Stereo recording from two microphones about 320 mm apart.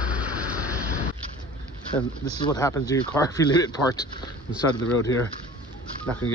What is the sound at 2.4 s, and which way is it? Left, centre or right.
Speech, centre.